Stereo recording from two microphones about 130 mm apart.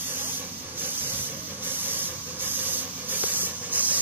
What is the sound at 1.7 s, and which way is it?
Hiss, 15° right (ahead or behind).